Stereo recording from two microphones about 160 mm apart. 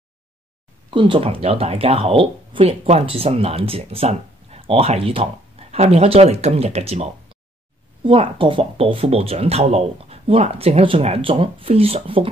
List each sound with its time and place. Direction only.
0.8 s speech: 30° right (ahead or behind)